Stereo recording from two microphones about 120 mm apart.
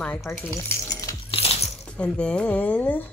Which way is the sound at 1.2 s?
55° left (ahead or behind).